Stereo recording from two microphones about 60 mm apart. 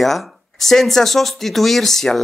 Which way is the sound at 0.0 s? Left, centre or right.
Centre.